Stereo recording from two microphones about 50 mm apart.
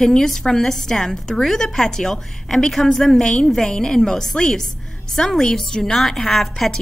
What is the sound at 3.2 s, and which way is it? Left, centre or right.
A woman's voice, centre.